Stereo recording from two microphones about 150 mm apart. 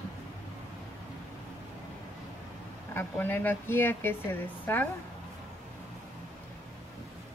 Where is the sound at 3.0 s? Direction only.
15° left (ahead or behind).